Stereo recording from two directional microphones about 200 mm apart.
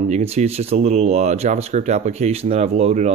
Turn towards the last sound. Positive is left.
turn(degrees=-30)  # may be behind; listen again after turning